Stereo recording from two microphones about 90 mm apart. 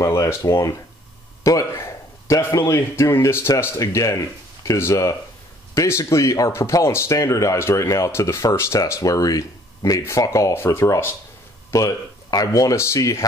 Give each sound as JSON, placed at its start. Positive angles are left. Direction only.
{"t": 0.0, "sound": "speech", "side_deg": 35}
{"t": 1.4, "sound": "a sound", "side_deg": 40}
{"t": 1.8, "sound": "speech", "side_deg": 35}
{"t": 11.7, "sound": "speech", "side_deg": 40}